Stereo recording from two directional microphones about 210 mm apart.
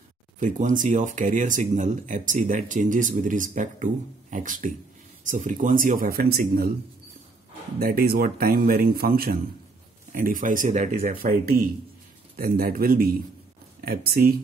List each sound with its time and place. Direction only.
0.4 s speech: 35° right (ahead or behind)
7.8 s speech: 45° right (ahead or behind)